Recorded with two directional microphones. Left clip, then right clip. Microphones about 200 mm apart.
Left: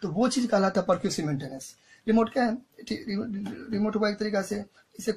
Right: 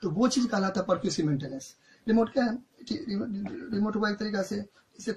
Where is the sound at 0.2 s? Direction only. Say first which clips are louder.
Left 4 dB; 25° left (ahead or behind).